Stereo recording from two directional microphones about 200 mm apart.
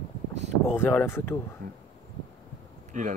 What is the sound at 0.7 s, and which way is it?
Speech, 10° left (ahead or behind).